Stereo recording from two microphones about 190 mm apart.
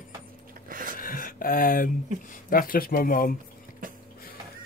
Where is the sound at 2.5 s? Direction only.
50° left (ahead or behind).